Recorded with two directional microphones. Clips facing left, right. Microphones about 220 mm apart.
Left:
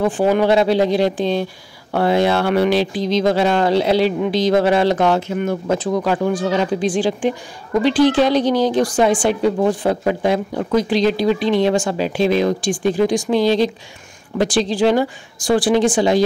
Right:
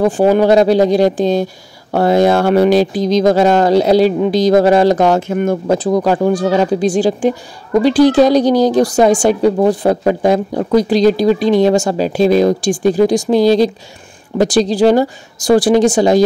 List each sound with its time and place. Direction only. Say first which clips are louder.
0.0 s speech: right 5 dB; 40° right (ahead or behind)